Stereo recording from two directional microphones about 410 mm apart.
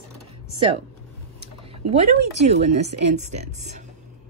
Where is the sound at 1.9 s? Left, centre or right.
Centre.